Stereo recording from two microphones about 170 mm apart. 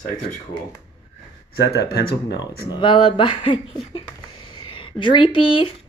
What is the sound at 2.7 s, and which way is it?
Speech, 30° left (ahead or behind).